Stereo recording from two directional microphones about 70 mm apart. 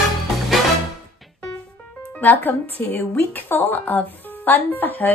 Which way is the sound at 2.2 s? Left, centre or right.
Left.